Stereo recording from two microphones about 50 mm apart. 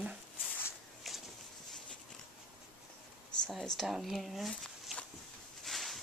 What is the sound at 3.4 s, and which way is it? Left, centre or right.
Speech, centre.